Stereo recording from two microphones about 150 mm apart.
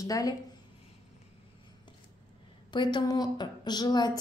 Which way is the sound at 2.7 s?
30° left (ahead or behind).